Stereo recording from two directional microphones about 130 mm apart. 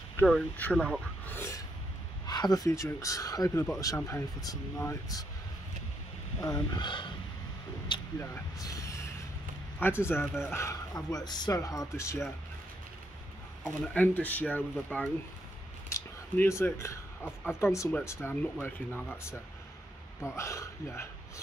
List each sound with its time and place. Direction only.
0.2 s speech: 10° left (ahead or behind)
1.2 s a sound: 20° left (ahead or behind)
2.2 s speech: 30° left (ahead or behind)
6.4 s speech: 30° left (ahead or behind)
8.2 s speech: 25° left (ahead or behind)
9.8 s speech: 15° left (ahead or behind)
13.9 s speech: 15° left (ahead or behind)
15.9 s a sound: 20° left (ahead or behind)
17.5 s speech: 20° left (ahead or behind)